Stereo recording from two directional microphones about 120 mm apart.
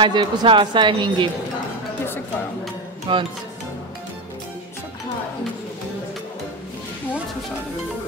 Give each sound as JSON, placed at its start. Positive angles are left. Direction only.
{"t": 0.0, "sound": "speech", "side_deg": -40}
{"t": 3.1, "sound": "speech", "side_deg": -45}